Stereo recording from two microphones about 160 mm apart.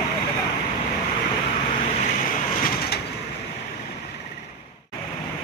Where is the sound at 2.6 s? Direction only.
75° left (ahead or behind).